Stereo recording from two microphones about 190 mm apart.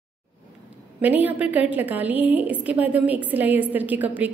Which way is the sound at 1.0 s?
10° right (ahead or behind).